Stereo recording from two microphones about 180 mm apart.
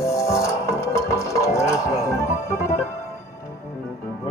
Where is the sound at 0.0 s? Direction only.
15° left (ahead or behind).